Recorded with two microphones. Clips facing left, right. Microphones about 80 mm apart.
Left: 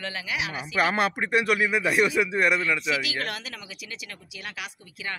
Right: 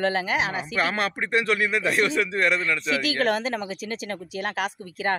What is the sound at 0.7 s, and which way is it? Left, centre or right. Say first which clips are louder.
Speech: left 3 dB; centre.